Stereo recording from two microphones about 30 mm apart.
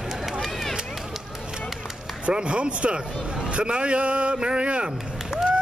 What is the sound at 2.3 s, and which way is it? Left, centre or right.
Speech, right.